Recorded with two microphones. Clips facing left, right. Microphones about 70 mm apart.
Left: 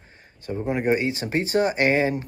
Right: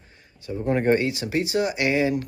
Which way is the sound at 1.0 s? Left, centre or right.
Left.